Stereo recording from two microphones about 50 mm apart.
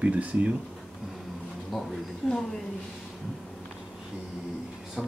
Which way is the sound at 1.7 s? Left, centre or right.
Centre.